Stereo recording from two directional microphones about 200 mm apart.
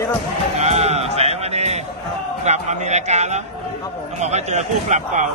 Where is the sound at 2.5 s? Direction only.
35° right (ahead or behind).